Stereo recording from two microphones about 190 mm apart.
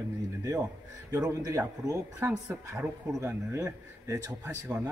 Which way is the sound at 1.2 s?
20° right (ahead or behind).